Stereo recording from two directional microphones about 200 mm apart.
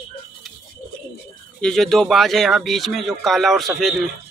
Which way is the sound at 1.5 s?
Centre (ahead or behind).